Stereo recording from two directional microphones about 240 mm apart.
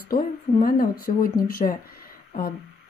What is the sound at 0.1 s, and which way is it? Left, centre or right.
A woman's voice, left.